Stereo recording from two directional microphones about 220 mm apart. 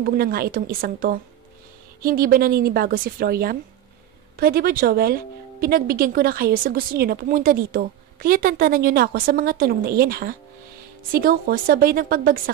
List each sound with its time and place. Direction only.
0.0 s a woman's voice: 45° right (ahead or behind)